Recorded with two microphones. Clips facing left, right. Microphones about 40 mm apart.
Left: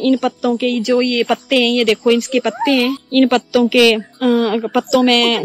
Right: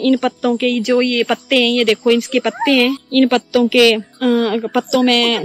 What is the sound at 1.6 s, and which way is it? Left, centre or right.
Speech, centre.